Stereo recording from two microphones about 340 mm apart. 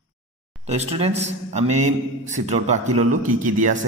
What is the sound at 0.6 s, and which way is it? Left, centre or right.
Speech, centre.